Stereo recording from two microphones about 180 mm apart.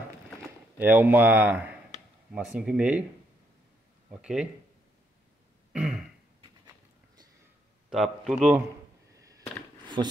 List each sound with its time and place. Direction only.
0.7 s speech: 10° right (ahead or behind)
4.1 s speech: 5° right (ahead or behind)
5.7 s throat clearing: 5° right (ahead or behind)
7.9 s speech: centre (ahead or behind)
9.1 s a sound: 20° right (ahead or behind)
10.0 s speech: 25° right (ahead or behind)